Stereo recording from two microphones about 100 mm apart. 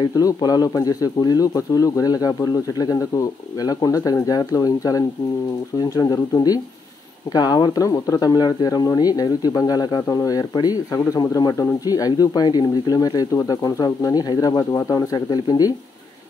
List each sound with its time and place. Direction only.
0.0 s speech: 40° left (ahead or behind)